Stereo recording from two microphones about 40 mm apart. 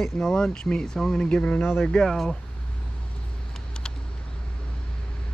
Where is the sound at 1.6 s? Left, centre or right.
Left.